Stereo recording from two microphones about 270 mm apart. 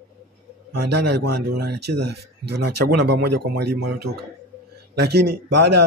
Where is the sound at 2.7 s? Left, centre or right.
Right.